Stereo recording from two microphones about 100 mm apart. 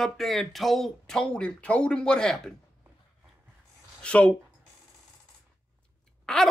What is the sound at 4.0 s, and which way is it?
Speech, 10° left (ahead or behind).